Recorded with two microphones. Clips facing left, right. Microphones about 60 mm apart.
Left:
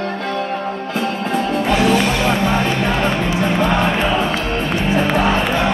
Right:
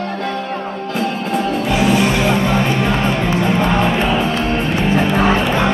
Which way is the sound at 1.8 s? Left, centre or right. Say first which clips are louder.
Right 3 dB; centre.